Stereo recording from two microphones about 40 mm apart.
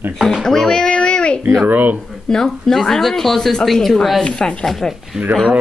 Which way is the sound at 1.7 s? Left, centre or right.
Right.